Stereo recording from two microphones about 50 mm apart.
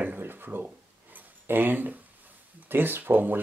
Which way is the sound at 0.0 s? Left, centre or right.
Right.